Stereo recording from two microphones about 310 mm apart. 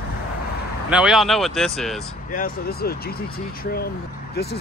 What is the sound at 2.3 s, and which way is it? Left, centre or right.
Speech, left.